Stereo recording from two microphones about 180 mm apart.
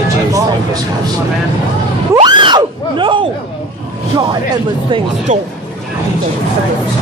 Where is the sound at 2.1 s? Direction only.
25° right (ahead or behind).